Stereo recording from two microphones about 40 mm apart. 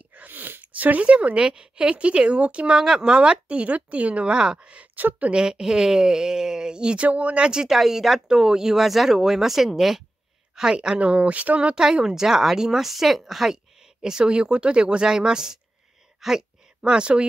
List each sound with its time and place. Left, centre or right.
0.1 s speech: right
2.8 s speech: centre
4.9 s speech: right
5.3 s a woman's voice: centre
7.1 s speech: right
7.6 s a woman's voice: centre
10.5 s a woman's voice: centre
11.0 s speech: right
11.7 s a woman's voice: centre
14.3 s speech: right; by 16.4 s centre
16.8 s speech: right